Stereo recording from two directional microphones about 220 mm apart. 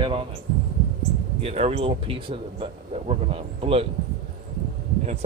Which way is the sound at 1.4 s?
30° right (ahead or behind).